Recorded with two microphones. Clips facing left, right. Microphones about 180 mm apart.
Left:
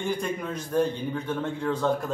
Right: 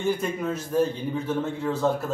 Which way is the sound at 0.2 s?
5° right (ahead or behind).